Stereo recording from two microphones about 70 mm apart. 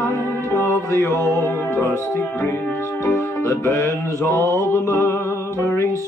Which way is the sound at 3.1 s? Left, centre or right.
Left.